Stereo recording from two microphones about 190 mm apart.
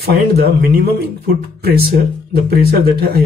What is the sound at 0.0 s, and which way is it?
Speech, 55° right (ahead or behind).